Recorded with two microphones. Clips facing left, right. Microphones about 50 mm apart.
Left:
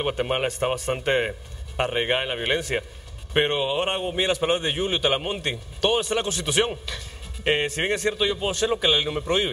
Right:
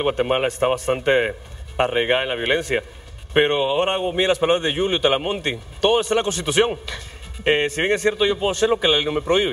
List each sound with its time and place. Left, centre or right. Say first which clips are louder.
0.2 s a man's voice: right 5 dB; centre